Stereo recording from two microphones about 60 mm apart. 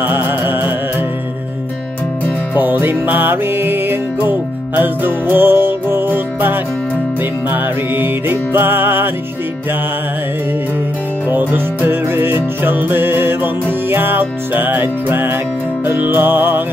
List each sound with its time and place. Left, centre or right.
0.0 s music: right
2.5 s music: right
11.2 s music: right